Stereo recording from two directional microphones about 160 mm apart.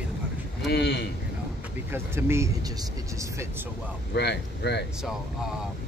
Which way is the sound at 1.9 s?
15° right (ahead or behind).